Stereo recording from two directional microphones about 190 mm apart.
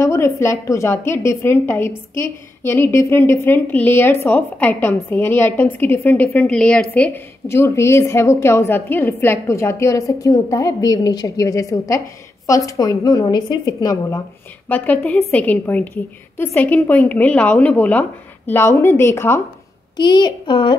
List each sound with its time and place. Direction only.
0.0 s a woman's voice: 15° left (ahead or behind)
14.7 s a woman's voice: 5° left (ahead or behind); by 20.7 s 25° left (ahead or behind)